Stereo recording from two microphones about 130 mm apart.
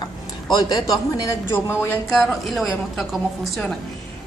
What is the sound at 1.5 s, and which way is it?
Speech, 15° left (ahead or behind).